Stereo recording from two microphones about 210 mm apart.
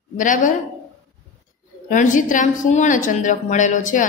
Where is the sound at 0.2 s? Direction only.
40° left (ahead or behind).